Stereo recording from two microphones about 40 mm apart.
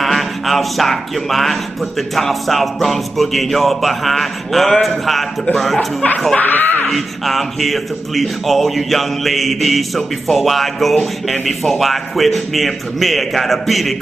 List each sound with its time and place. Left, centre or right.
0.0 s speech: centre
6.4 s speech: left
6.9 s speech: centre